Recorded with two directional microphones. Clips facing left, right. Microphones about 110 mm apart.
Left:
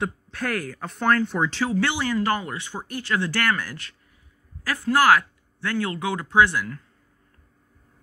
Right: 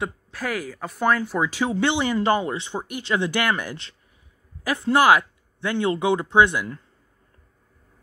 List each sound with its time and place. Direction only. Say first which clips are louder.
0.0 s speech: left 1 dB; centre (ahead or behind)
1.6 s speech: right 4 dB; 20° right (ahead or behind)